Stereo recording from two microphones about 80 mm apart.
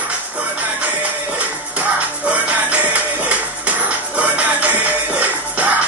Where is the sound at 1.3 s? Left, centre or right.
Centre.